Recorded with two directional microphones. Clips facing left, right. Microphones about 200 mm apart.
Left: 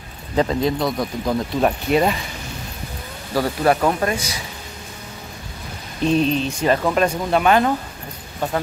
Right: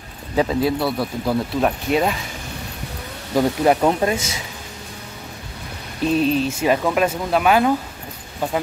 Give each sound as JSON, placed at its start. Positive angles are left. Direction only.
{"t": 0.4, "sound": "speech", "side_deg": -5}
{"t": 3.3, "sound": "speech", "side_deg": -20}
{"t": 6.0, "sound": "speech", "side_deg": -5}